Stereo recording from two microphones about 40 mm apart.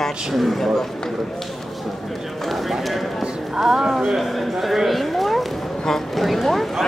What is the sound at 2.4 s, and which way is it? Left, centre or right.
A man's voice, centre.